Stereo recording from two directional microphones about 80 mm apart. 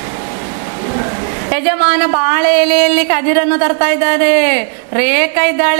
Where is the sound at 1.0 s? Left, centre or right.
Centre.